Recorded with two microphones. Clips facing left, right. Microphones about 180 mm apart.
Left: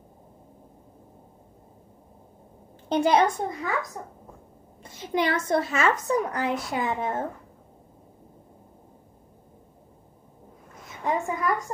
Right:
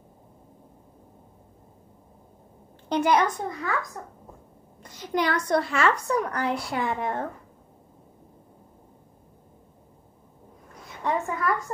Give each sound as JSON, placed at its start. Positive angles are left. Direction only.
{"t": 2.9, "sound": "a woman's voice", "side_deg": 25}
{"t": 4.8, "sound": "a woman's voice", "side_deg": 25}
{"t": 11.1, "sound": "a woman's voice", "side_deg": 15}